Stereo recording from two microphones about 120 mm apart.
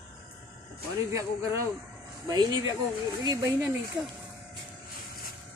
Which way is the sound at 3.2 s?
25° right (ahead or behind).